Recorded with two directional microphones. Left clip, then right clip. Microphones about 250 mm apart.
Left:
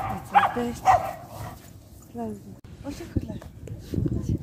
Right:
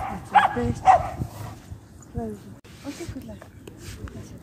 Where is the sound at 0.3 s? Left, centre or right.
Right.